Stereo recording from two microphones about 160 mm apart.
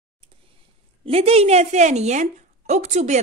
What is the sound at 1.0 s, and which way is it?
A woman's voice, 40° right (ahead or behind).